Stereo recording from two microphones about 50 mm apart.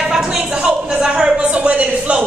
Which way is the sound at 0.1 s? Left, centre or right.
Centre.